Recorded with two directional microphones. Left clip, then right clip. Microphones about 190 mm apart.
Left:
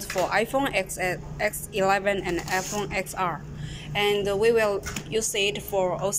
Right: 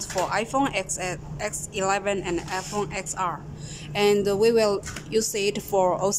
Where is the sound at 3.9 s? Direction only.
20° right (ahead or behind).